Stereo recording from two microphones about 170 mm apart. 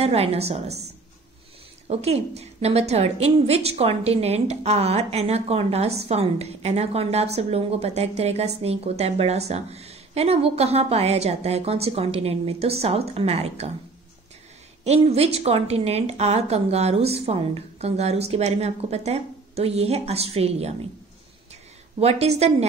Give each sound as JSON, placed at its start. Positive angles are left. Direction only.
{"t": 0.0, "sound": "a woman's voice", "side_deg": -35}
{"t": 1.9, "sound": "a woman's voice", "side_deg": -40}
{"t": 14.9, "sound": "a woman's voice", "side_deg": -40}
{"t": 21.9, "sound": "a woman's voice", "side_deg": -35}